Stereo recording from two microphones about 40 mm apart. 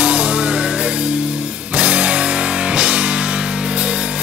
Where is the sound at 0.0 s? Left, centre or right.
Right.